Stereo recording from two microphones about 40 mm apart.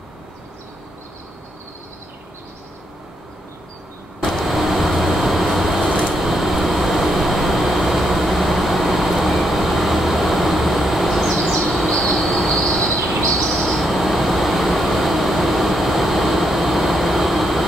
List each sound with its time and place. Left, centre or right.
4.2 s vehicle: centre
4.5 s vehicle: centre
11.5 s a sound: centre
12.4 s train: centre
12.8 s a sound: centre
13.6 s vehicle: centre